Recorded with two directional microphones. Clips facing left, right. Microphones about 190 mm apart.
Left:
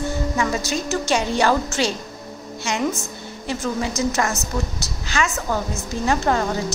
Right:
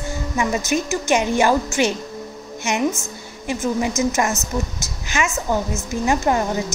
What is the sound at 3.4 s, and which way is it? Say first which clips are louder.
A woman's voice: right 3 dB; 15° right (ahead or behind).